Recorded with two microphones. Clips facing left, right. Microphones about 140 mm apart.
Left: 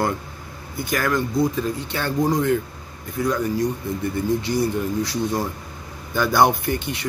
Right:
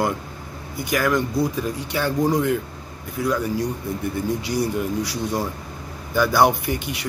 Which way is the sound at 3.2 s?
10° right (ahead or behind).